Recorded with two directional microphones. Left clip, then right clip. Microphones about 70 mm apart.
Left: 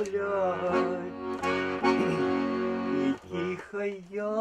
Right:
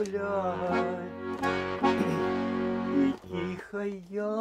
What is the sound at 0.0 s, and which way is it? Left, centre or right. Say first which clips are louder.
Music: left 2 dB; left.